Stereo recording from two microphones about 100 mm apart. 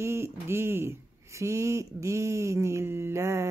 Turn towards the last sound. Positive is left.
turn(degrees=-30)  # may be behind; listen again after turning